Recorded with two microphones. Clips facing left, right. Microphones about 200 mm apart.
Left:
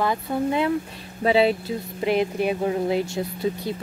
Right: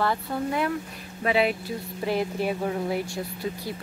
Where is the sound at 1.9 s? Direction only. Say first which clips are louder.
Left 4 dB; 20° left (ahead or behind).